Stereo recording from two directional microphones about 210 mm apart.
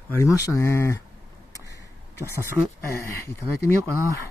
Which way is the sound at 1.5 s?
15° left (ahead or behind).